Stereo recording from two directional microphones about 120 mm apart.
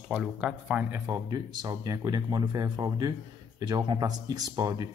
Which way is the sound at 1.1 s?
35° right (ahead or behind).